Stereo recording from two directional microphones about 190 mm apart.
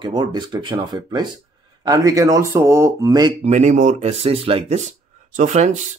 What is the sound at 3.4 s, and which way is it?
Speech, 35° right (ahead or behind).